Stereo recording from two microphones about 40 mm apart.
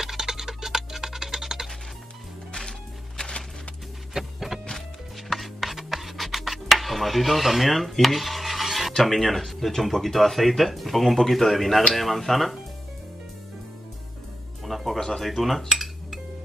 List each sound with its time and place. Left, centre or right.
0.0 s music: centre
3.2 s music: centre
4.2 s music: centre
5.3 s scratch: centre
8.9 s speech: centre
14.6 s music: centre
15.0 s speech: centre
15.7 s cutlery: centre